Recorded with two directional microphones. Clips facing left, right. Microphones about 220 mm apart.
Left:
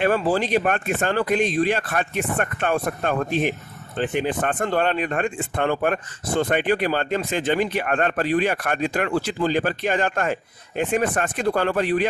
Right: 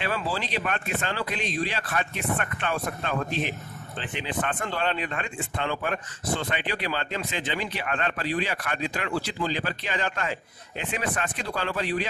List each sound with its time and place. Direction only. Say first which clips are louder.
0.0 s speech: left 10 dB; 50° left (ahead or behind)